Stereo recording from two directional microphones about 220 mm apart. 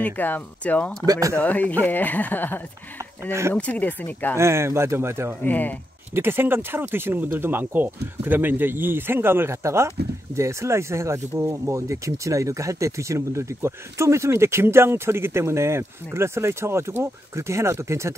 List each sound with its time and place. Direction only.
0.0 s speech: 5° left (ahead or behind)
1.0 s speech: 15° right (ahead or behind)
1.3 s speech: 5° left (ahead or behind)
3.3 s speech: 10° right (ahead or behind)
3.5 s speech: 5° left (ahead or behind)
4.4 s speech: 10° right (ahead or behind)
5.4 s speech: 10° left (ahead or behind)
6.1 s speech: 10° right (ahead or behind)